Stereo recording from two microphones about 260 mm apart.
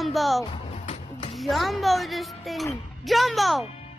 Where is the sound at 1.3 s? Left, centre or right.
Centre.